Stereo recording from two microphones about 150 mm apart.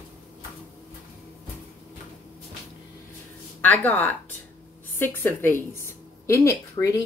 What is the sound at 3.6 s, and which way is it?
A woman's voice, 10° left (ahead or behind).